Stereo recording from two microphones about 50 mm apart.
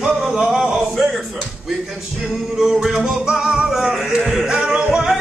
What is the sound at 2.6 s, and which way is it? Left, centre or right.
Music, centre.